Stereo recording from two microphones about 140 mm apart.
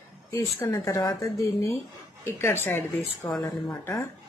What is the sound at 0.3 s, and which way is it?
Speech, 20° left (ahead or behind).